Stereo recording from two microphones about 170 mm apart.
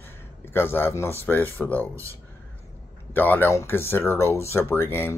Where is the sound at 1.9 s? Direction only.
15° right (ahead or behind).